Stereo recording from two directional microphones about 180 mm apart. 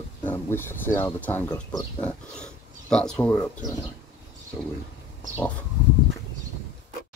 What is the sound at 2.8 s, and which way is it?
Speech, 5° left (ahead or behind).